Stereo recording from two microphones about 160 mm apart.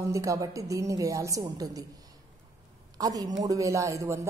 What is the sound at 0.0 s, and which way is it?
A woman's voice, 20° right (ahead or behind).